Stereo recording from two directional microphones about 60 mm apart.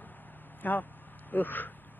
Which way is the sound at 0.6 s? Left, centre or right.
Left.